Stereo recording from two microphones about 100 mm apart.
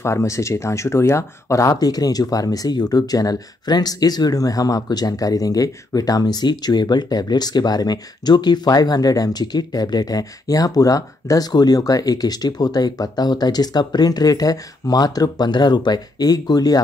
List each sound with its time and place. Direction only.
0.0 s speech: 30° left (ahead or behind)